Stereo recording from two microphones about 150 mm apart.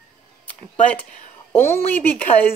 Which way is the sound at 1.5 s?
15° left (ahead or behind).